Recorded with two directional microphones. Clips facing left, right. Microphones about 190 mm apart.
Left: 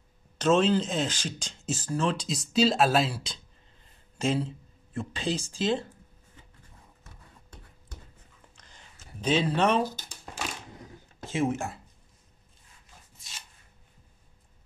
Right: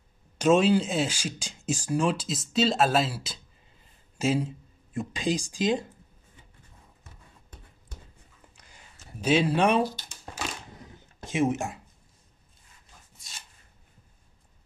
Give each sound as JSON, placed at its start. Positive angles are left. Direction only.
{"t": 0.4, "sound": "speech", "side_deg": -10}
{"t": 8.5, "sound": "a sound", "side_deg": -10}
{"t": 9.8, "sound": "speech", "side_deg": 45}
{"t": 11.2, "sound": "speech", "side_deg": -15}